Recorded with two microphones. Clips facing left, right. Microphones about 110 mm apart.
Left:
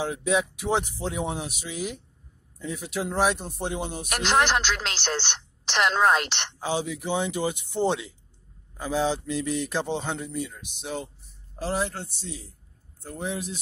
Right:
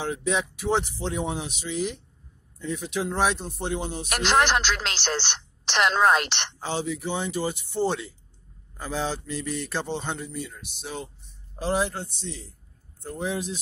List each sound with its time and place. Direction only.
0.0 s speech: 10° left (ahead or behind)
4.1 s speech: 75° right (ahead or behind)
6.6 s speech: 10° left (ahead or behind)
10.1 s a man's voice: 5° left (ahead or behind)
10.6 s speech: 15° left (ahead or behind)
11.5 s a man's voice: centre (ahead or behind)